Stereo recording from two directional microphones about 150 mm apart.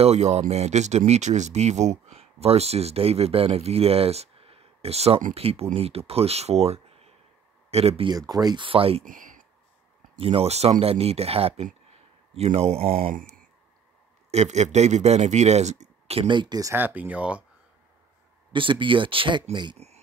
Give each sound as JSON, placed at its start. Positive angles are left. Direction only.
{"t": 0.0, "sound": "speech", "side_deg": -45}
{"t": 8.1, "sound": "speech", "side_deg": -25}
{"t": 9.0, "sound": "speech", "side_deg": -60}
{"t": 10.1, "sound": "speech", "side_deg": -40}
{"t": 12.9, "sound": "speech", "side_deg": -70}
{"t": 14.3, "sound": "speech", "side_deg": -50}
{"t": 16.7, "sound": "speech", "side_deg": -10}
{"t": 18.5, "sound": "speech", "side_deg": -35}